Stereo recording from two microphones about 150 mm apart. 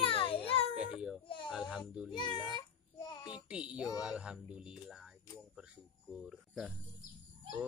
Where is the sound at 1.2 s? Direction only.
35° left (ahead or behind).